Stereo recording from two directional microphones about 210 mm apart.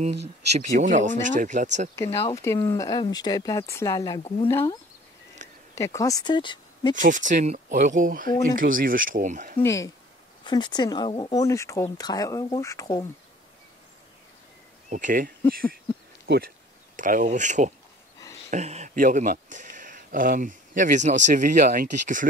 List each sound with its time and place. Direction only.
0.5 s speech: 35° right (ahead or behind)
2.2 s speech: 15° left (ahead or behind)
5.8 s speech: 15° left (ahead or behind)
7.0 s speech: 35° right (ahead or behind)
9.6 s speech: 15° left (ahead or behind)
14.9 s speech: 40° right (ahead or behind)